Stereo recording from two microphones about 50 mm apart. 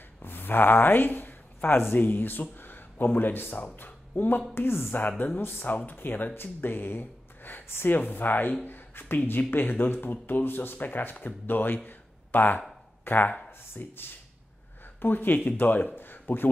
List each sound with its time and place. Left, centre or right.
0.2 s speech: left
4.6 s speech: left
4.9 s speech: left
5.4 s speech: left